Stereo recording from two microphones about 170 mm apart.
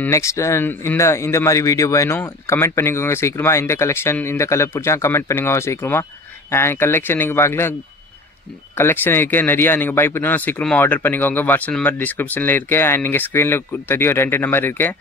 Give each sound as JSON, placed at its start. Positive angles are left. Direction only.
{"t": 0.0, "sound": "speech", "side_deg": 15}
{"t": 8.7, "sound": "speech", "side_deg": 10}